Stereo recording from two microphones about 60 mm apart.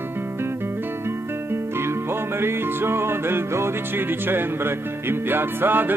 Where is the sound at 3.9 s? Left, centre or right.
Right.